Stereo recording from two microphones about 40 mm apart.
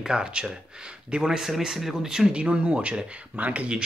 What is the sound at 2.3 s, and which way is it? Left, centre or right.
Speech, right.